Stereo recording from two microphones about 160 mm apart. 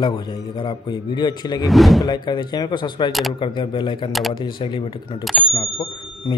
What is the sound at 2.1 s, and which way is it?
A man's voice, 25° left (ahead or behind).